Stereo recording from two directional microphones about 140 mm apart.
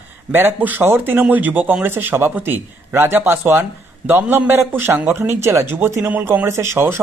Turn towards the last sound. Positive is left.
turn(degrees=-20)  # may be behind; listen again after turning